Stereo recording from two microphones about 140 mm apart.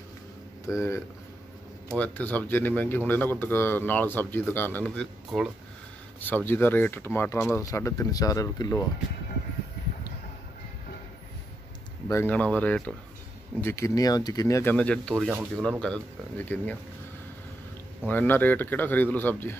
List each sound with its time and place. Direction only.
0.7 s a man's voice: 20° left (ahead or behind); by 5.5 s centre (ahead or behind)
6.2 s a man's voice: 15° left (ahead or behind)
12.1 s a man's voice: 15° left (ahead or behind)
18.0 s a man's voice: 15° left (ahead or behind)